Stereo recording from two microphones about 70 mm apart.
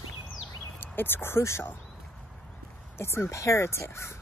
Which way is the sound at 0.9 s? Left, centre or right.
Left.